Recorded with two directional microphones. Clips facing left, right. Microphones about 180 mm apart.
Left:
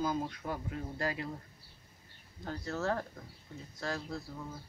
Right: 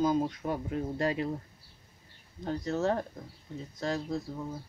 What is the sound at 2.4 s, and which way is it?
Speech, 20° right (ahead or behind).